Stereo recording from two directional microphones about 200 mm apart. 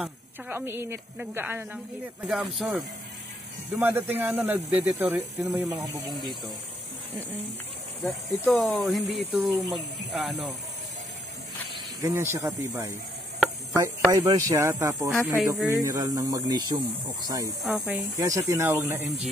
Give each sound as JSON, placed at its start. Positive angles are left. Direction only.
{"t": 0.5, "sound": "speech", "side_deg": -10}
{"t": 3.7, "sound": "speech", "side_deg": -10}
{"t": 8.0, "sound": "speech", "side_deg": 0}
{"t": 12.0, "sound": "speech", "side_deg": -10}
{"t": 17.6, "sound": "speech", "side_deg": -5}